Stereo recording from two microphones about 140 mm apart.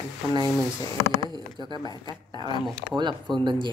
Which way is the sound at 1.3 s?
30° right (ahead or behind).